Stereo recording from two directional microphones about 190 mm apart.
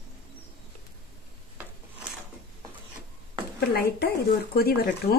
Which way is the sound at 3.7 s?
55° left (ahead or behind).